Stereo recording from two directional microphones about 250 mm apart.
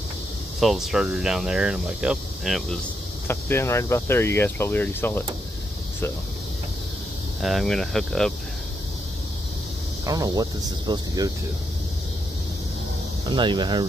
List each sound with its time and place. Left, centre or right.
0.6 s speech: centre
7.4 s speech: centre
10.0 s speech: centre
13.3 s speech: centre